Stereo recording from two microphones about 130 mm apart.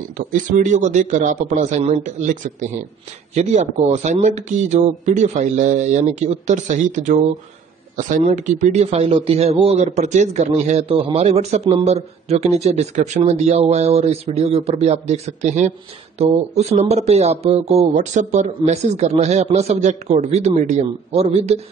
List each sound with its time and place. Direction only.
0.3 s speech: 70° right (ahead or behind)
7.9 s speech: 80° right; by 21.5 s 55° right (ahead or behind)